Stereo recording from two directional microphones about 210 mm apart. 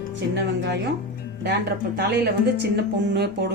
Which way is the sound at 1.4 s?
55° right (ahead or behind).